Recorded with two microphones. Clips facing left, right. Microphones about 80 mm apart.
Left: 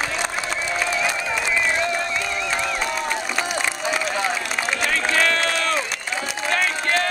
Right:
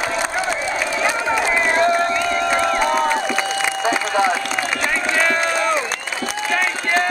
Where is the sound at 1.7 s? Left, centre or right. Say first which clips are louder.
Right 7 dB; right.